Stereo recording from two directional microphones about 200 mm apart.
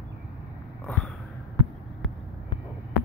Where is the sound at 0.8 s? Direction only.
Centre (ahead or behind).